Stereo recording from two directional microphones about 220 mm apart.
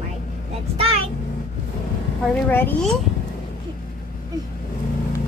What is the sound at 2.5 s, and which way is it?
Speech, 10° left (ahead or behind).